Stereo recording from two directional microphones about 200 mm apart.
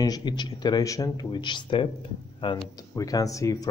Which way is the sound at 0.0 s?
20° left (ahead or behind).